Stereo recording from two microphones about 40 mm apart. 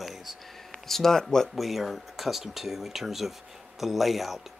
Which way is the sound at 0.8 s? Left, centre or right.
Centre.